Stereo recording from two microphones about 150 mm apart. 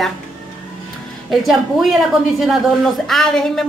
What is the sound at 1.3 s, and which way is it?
A woman's voice, centre (ahead or behind).